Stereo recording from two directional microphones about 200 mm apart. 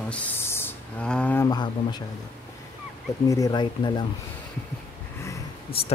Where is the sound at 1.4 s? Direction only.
20° left (ahead or behind).